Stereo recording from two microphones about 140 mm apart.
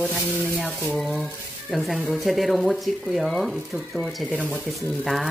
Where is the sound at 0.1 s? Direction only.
Centre (ahead or behind).